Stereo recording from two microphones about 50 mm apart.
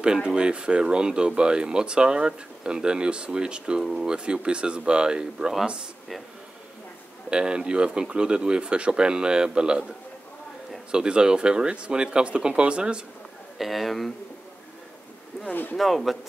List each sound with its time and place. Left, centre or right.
0.0 s speech: centre
7.2 s speech: centre
10.9 s speech: centre
13.6 s speech: centre
15.8 s speech: centre